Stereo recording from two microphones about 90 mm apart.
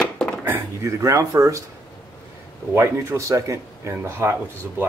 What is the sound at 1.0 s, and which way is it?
Speech, 35° right (ahead or behind).